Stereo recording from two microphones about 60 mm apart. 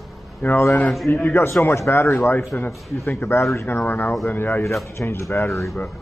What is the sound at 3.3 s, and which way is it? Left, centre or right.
Speech, left.